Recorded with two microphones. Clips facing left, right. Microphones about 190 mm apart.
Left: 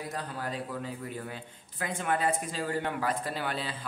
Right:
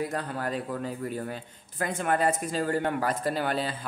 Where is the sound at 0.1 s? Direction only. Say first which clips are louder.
Right 5 dB; 55° right (ahead or behind).